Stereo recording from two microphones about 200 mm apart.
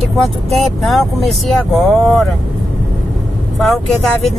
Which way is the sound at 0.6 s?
Centre (ahead or behind).